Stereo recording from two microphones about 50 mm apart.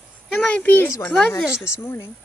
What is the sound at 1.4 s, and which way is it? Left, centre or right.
Speech, centre.